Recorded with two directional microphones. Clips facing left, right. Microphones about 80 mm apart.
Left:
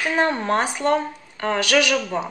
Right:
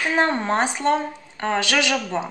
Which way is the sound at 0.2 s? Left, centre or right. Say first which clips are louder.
Even; right.